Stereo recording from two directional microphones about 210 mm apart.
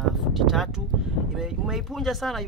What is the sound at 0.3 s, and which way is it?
Speech, centre (ahead or behind).